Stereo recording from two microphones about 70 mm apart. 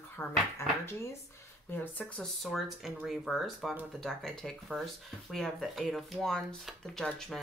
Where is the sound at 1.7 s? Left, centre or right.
Left.